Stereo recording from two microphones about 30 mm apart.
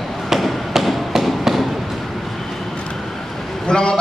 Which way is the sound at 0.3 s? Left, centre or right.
Centre.